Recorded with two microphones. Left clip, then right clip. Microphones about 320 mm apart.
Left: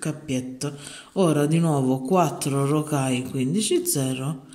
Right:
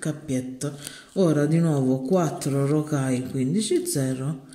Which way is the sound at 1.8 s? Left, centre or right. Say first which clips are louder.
Even; left.